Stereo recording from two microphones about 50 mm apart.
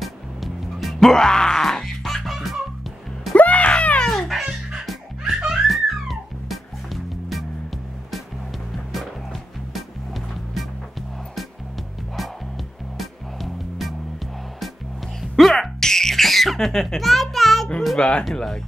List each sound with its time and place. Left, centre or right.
0.0 s music: centre
2.3 s music: centre
3.3 s a sound: left
4.0 s music: centre
4.3 s music: centre
9.3 s music: centre
15.3 s a sound: centre
17.9 s speech: left